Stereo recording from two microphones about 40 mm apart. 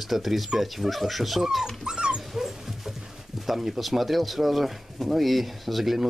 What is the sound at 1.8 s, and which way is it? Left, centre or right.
Dog, centre.